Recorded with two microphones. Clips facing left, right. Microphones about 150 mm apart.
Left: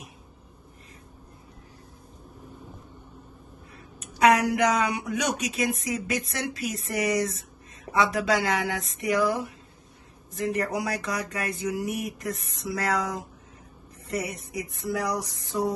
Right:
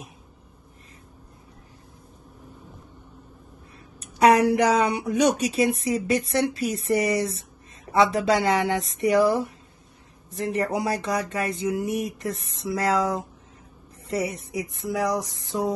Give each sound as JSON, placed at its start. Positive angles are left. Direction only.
{"t": 4.0, "sound": "speech", "side_deg": -35}
{"t": 10.5, "sound": "speech", "side_deg": -30}